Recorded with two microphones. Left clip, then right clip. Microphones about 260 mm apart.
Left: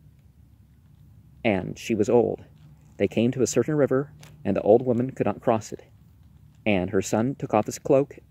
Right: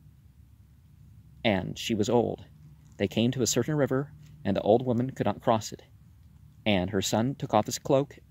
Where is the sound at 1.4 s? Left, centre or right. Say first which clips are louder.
Left 2 dB; right.